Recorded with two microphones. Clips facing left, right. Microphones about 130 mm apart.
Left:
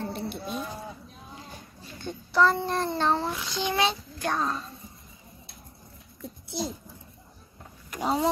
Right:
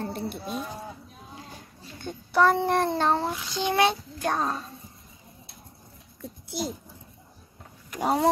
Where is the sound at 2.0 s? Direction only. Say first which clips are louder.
Right 1 dB; 55° right (ahead or behind).